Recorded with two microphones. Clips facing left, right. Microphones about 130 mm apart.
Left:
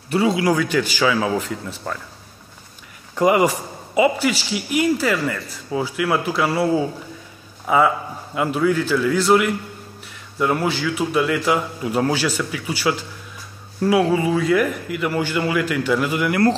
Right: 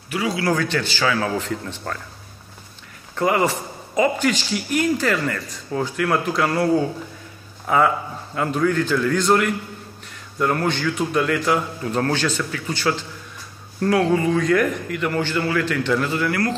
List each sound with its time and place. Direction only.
0.1 s a man's voice: 30° left (ahead or behind)
0.4 s a man's voice: 10° left (ahead or behind)
3.2 s a man's voice: 15° left (ahead or behind)